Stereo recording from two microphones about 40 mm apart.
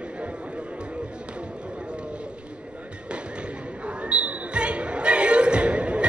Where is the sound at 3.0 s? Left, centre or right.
Right.